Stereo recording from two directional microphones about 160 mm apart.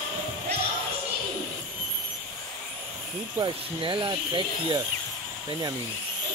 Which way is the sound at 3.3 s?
30° right (ahead or behind).